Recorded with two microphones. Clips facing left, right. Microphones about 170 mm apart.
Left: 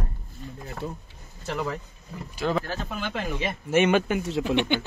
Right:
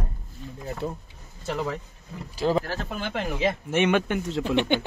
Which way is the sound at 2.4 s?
30° right (ahead or behind).